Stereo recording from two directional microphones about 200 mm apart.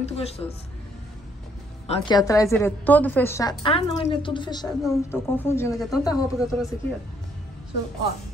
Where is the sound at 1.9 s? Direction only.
20° left (ahead or behind).